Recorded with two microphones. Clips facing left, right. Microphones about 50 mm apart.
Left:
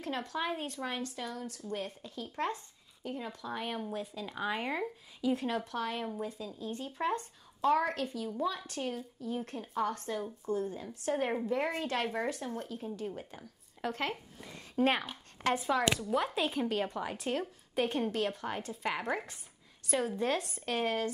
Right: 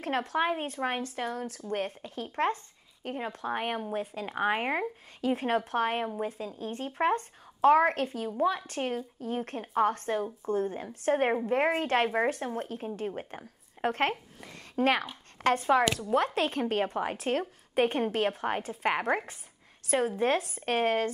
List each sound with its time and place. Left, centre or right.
0.0 s a woman's voice: right
14.4 s a sound: right
15.3 s speech: right